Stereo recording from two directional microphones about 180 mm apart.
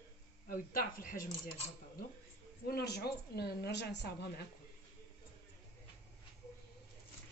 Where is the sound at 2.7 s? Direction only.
65° left (ahead or behind).